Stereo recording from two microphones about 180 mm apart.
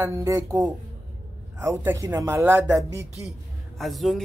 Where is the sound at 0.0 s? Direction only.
15° right (ahead or behind).